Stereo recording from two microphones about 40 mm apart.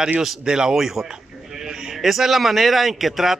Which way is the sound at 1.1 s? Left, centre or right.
Centre.